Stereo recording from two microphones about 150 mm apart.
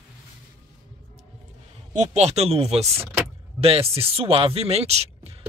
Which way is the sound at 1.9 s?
50° right (ahead or behind).